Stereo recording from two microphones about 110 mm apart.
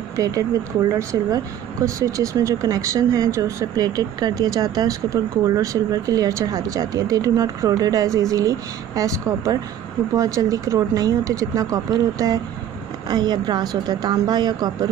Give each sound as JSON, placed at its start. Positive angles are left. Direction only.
{"t": 0.1, "sound": "speech", "side_deg": -30}